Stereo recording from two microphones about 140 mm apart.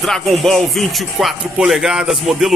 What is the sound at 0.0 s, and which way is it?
A man's voice, centre (ahead or behind).